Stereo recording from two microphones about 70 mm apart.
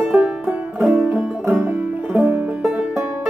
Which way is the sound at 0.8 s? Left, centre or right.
Right.